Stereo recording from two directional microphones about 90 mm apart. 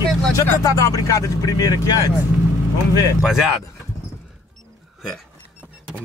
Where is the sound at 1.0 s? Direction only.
40° left (ahead or behind).